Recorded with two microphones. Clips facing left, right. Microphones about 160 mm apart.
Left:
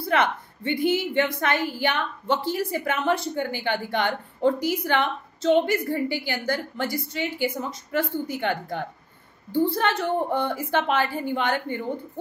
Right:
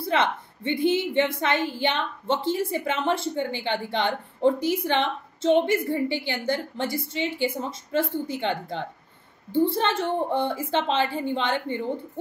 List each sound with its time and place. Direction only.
0.0 s a woman's voice: 25° right (ahead or behind)